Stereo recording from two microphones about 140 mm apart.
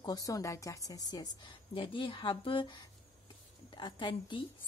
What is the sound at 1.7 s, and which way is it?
A woman's voice, 40° left (ahead or behind).